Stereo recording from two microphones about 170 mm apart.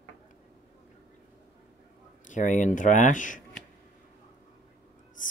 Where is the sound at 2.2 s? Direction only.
45° left (ahead or behind).